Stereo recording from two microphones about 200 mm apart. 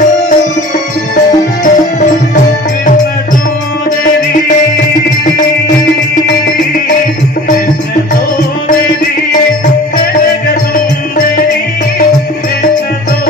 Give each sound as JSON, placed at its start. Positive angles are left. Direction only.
{"t": 1.1, "sound": "music", "side_deg": 40}